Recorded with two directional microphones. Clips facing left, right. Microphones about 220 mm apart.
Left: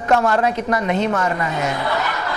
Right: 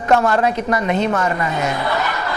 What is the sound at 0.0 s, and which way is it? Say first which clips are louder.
Speech: right 1 dB; 20° right (ahead or behind).